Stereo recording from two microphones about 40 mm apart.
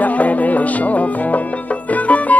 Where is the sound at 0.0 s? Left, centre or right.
Left.